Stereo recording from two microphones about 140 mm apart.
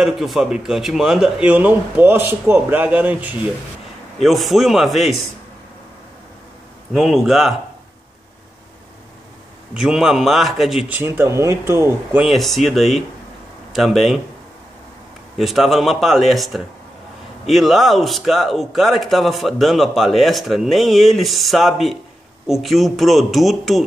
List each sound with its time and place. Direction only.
0.0 s speech: centre (ahead or behind)
4.2 s speech: centre (ahead or behind)
6.9 s speech: centre (ahead or behind)
9.8 s speech: 5° right (ahead or behind)
11.0 s speech: 15° right (ahead or behind)
12.2 s speech: centre (ahead or behind)
15.3 s speech: centre (ahead or behind)